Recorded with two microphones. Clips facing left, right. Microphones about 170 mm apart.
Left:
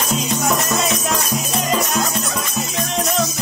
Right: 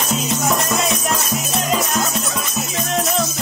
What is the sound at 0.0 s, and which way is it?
Music, centre (ahead or behind).